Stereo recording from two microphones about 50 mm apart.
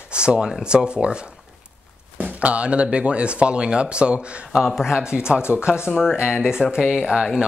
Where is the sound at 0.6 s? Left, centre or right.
Centre.